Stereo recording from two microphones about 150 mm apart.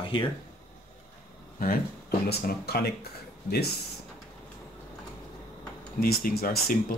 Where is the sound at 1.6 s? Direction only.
80° left.